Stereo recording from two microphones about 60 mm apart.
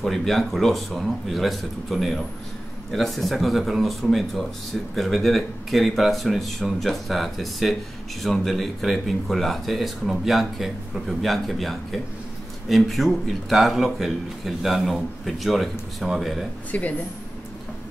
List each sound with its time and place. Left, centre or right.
0.0 s speech: centre
16.7 s speech: left